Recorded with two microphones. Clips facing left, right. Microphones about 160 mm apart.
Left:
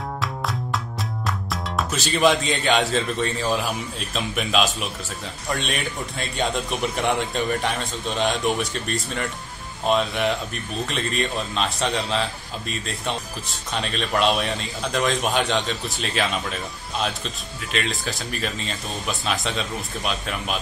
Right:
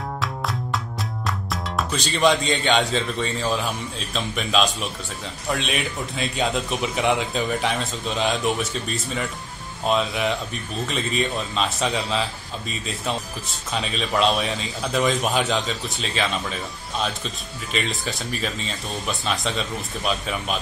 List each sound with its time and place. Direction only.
0.2 s music: centre (ahead or behind)
1.2 s a man's voice: centre (ahead or behind)
17.7 s a man's voice: centre (ahead or behind)